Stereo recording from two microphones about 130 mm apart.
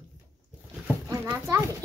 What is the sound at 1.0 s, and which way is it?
Speech, 25° right (ahead or behind).